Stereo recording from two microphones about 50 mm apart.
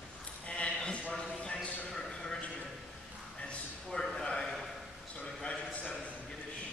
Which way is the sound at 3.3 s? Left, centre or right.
Left.